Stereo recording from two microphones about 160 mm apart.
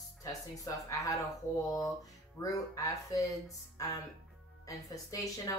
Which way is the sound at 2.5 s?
20° left (ahead or behind).